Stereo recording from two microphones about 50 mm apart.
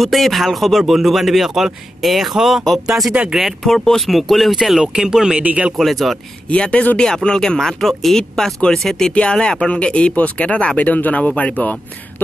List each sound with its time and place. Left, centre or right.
0.0 s speech: centre
3.1 s speech: centre
3.3 s speech: centre
5.4 s speech: right
5.8 s speech: centre
6.5 s speech: left
7.2 s speech: centre
9.1 s speech: centre